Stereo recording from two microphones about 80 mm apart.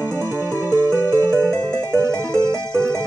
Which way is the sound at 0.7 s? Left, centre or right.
Left.